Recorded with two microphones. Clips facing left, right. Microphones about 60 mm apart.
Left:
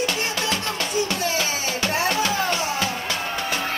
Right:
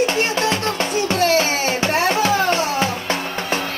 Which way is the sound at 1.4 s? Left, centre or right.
Right.